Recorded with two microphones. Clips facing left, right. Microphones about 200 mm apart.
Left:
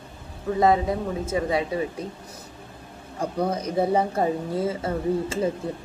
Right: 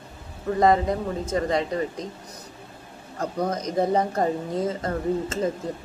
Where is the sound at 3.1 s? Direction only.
10° left (ahead or behind).